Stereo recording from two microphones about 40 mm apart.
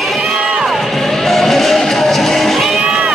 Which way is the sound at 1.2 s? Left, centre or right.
Centre.